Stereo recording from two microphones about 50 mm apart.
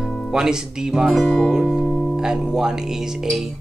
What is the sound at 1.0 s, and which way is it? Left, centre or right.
Speech, centre.